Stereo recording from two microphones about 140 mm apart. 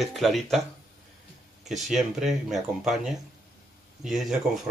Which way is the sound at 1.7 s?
Centre (ahead or behind).